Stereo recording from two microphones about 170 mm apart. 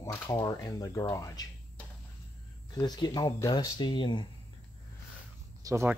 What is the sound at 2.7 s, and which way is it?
Speech, 25° left (ahead or behind).